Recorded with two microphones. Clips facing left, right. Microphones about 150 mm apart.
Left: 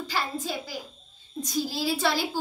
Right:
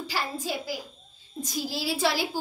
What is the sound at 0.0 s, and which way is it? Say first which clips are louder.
A woman's voice: left 1 dB; 10° right (ahead or behind).